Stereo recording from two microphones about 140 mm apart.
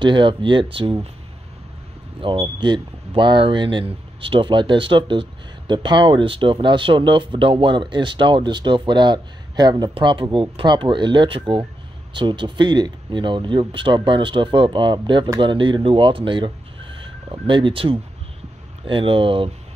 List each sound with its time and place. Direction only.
0.0 s speech: 35° right (ahead or behind)
2.3 s speech: 35° right (ahead or behind)